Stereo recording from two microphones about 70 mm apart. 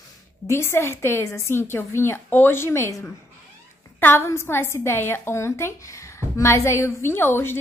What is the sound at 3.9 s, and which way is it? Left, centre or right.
A woman's voice, left.